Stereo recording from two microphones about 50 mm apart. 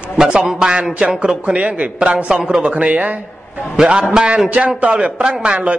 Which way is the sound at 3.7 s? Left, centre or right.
Centre.